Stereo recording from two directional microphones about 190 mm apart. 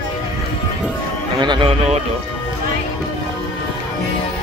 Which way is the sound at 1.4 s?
25° right (ahead or behind).